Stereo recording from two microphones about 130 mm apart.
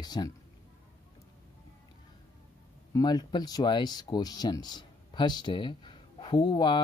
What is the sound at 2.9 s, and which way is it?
Speech, 35° left (ahead or behind).